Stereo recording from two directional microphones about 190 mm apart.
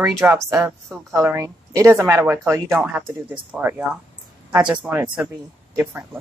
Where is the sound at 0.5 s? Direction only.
15° right (ahead or behind).